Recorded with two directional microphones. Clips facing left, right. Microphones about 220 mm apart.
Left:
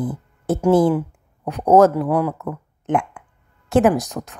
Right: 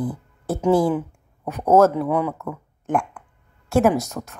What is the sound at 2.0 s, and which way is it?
Speech, 5° left (ahead or behind).